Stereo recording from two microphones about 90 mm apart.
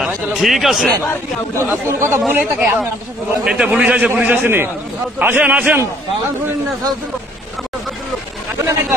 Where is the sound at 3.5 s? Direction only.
10° right (ahead or behind).